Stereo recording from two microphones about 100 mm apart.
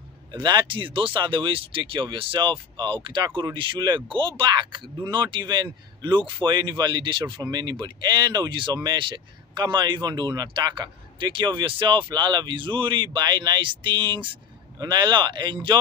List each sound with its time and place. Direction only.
0.3 s speech: 45° right (ahead or behind)